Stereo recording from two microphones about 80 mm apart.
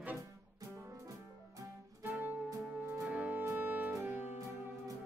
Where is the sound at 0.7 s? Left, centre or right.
Right.